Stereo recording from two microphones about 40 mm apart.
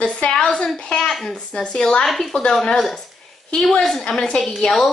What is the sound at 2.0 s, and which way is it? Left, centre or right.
Speech, centre.